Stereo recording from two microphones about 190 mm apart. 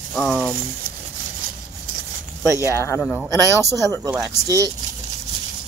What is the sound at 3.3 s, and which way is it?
Speech, 15° right (ahead or behind).